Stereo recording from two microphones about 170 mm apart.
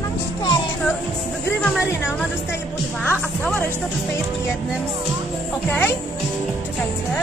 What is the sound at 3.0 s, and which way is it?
Music, 10° left (ahead or behind).